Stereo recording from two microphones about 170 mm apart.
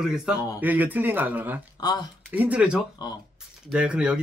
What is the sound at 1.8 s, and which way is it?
Speech, 25° left (ahead or behind).